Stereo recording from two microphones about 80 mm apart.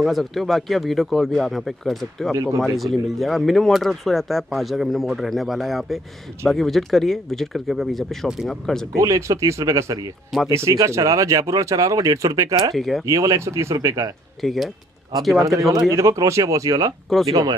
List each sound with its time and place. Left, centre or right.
0.0 s speech: centre
2.3 s speech: right
2.8 s speech: centre
8.9 s speech: right
12.7 s speech: centre
13.0 s speech: right
14.4 s speech: centre
15.3 s speech: right